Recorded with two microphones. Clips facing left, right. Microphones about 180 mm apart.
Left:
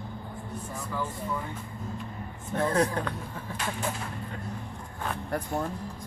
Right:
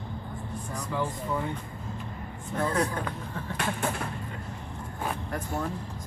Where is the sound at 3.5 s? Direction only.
60° right (ahead or behind).